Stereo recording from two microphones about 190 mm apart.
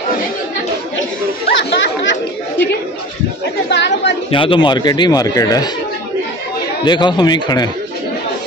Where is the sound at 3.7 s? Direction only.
65° left (ahead or behind).